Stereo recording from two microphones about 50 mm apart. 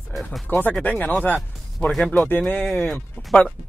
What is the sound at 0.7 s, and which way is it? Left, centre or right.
Speech, left.